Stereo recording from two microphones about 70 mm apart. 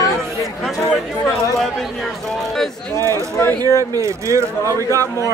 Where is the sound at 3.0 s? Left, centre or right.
Right.